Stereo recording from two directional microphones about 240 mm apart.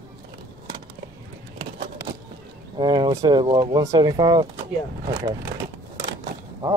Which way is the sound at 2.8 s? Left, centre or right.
Centre.